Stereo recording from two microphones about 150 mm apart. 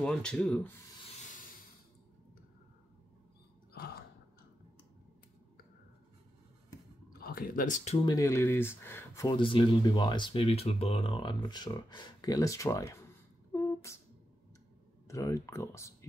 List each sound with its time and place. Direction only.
0.0 s rub: 5° left (ahead or behind)
1.3 s a sound: 65° left (ahead or behind)
3.7 s sigh: 90° left
7.1 s speech: 80° left; by 8.0 s 55° left (ahead or behind)
8.0 s speech: 25° left (ahead or behind)
9.3 s speech: 35° left (ahead or behind)
13.5 s beatboxing: 20° left (ahead or behind)
15.0 s speech: 20° left (ahead or behind)